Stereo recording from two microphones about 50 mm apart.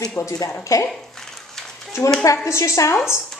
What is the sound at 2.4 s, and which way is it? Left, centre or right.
Speech, left.